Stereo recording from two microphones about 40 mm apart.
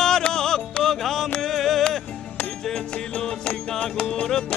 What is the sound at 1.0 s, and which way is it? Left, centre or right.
Music, centre.